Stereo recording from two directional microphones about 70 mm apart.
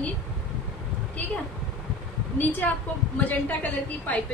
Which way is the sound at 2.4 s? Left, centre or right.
Left.